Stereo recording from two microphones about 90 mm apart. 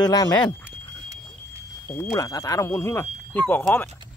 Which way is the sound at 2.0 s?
40° left (ahead or behind).